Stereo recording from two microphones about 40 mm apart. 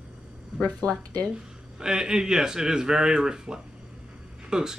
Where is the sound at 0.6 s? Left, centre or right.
Left.